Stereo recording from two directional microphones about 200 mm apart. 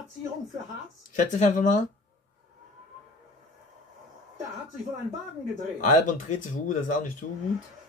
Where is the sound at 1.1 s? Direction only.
40° left (ahead or behind).